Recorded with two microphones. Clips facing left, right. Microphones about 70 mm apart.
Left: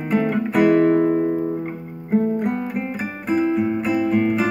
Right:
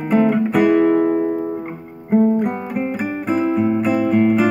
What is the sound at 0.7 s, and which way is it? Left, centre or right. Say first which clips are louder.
Guitar: right 1 dB; centre.